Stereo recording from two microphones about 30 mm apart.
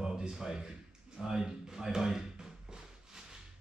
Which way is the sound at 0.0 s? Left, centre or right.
Right.